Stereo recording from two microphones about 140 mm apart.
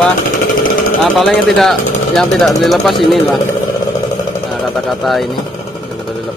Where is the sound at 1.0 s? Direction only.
5° left (ahead or behind).